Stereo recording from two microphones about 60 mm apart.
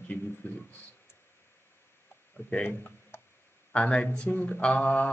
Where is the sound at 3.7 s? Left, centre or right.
Centre.